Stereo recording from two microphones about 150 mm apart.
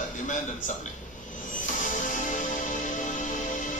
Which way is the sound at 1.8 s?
60° left (ahead or behind).